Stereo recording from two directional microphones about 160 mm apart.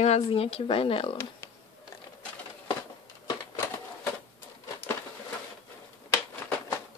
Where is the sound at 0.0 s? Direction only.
40° left (ahead or behind).